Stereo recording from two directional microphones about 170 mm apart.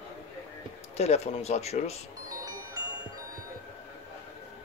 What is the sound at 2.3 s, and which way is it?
Music, 20° right (ahead or behind).